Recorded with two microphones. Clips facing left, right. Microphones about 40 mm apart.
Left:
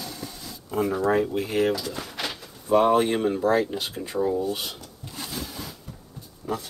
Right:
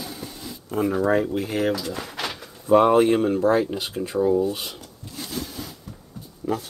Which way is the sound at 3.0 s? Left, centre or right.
Centre.